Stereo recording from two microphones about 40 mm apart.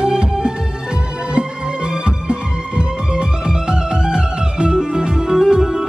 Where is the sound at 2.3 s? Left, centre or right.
Right.